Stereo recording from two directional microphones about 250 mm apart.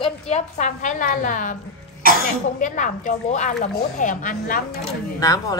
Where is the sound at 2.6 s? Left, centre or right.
Left.